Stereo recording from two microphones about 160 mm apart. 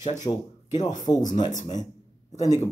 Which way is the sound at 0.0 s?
50° left (ahead or behind).